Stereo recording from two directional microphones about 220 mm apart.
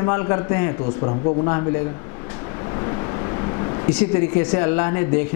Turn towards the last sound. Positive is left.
turn(degrees=10)  # may be behind; listen again after turning